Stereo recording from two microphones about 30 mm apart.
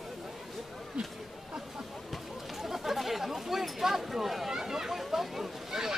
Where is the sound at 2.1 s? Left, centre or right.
Centre.